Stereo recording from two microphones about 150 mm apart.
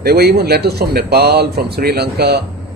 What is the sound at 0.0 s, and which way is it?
Speech, 90° right.